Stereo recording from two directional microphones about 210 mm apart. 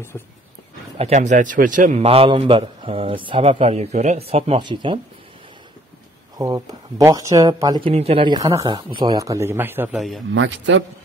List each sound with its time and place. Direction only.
0.1 s speech: 10° left (ahead or behind)
0.9 s a man's voice: 30° right (ahead or behind)
6.3 s speech: 20° right (ahead or behind)
10.3 s a man's voice: 60° right (ahead or behind)